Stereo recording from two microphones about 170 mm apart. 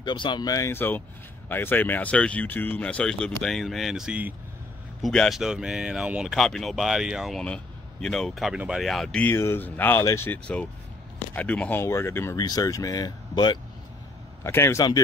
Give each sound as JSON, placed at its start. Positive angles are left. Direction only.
{"t": 0.0, "sound": "speech", "side_deg": 25}
{"t": 14.4, "sound": "speech", "side_deg": 15}